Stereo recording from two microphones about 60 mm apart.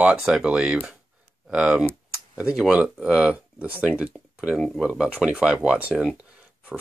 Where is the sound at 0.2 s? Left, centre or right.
Centre.